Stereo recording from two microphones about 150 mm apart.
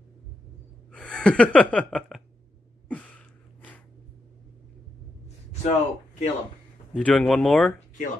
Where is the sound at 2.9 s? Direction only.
10° left (ahead or behind).